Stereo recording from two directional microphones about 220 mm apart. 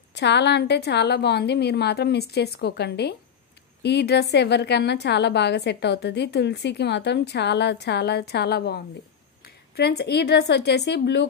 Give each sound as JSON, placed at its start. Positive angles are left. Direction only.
{"t": 0.1, "sound": "a woman's voice", "side_deg": 50}